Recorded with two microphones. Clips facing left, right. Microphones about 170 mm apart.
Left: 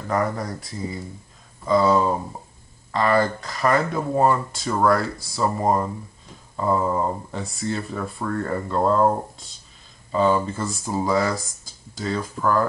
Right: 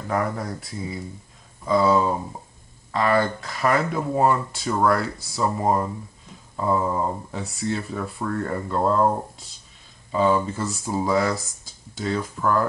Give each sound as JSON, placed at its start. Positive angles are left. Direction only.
{"t": 0.1, "sound": "speech", "side_deg": 0}